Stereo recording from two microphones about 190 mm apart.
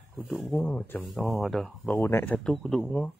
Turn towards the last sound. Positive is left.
turn(degrees=5)  # may be behind; listen again after turning